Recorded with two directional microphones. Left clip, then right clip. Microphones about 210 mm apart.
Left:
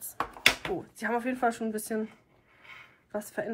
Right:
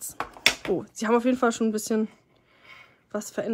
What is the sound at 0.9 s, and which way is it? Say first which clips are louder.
Speech: right 8 dB; 20° right (ahead or behind).